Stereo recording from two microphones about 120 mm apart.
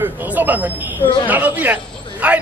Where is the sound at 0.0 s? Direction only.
15° right (ahead or behind).